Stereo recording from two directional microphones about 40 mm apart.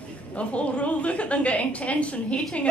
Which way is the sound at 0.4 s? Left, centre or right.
Left.